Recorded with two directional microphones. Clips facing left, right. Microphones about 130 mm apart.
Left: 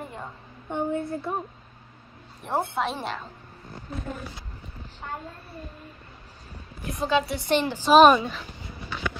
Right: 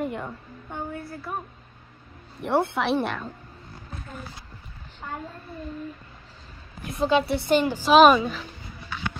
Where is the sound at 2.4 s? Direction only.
75° right (ahead or behind).